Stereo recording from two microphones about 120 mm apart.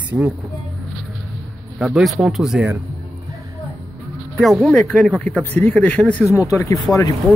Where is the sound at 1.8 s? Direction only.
5° right (ahead or behind).